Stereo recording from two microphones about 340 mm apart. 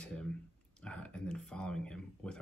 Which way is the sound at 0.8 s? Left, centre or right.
Centre.